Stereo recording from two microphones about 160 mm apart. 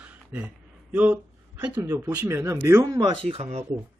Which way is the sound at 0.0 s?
10° right (ahead or behind).